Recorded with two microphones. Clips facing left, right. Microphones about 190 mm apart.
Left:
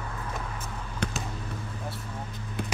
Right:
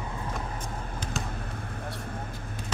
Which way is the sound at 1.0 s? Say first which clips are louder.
Left 5 dB; 65° left (ahead or behind).